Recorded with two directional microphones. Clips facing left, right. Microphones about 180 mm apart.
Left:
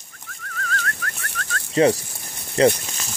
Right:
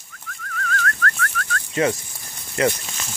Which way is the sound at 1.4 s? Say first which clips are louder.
Left 5 dB; 30° left (ahead or behind).